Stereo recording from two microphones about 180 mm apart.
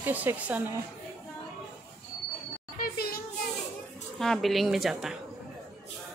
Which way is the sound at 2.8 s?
55° left (ahead or behind).